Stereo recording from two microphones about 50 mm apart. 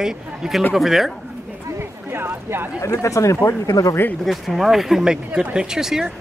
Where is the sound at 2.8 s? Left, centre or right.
Left.